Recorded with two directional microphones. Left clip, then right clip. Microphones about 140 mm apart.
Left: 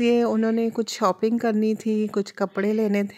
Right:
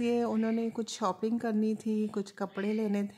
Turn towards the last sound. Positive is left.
turn(degrees=35)  # may be behind; listen again after turning